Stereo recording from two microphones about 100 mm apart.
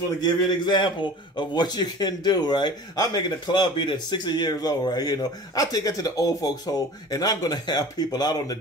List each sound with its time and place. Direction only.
0.2 s a man's voice: 50° left (ahead or behind)